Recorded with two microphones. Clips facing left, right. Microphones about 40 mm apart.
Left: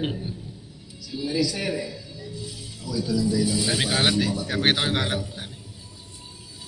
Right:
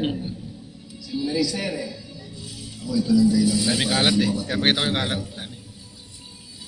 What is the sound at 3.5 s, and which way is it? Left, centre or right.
Speech, centre.